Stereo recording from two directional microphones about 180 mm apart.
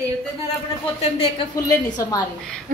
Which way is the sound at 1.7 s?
20° left (ahead or behind).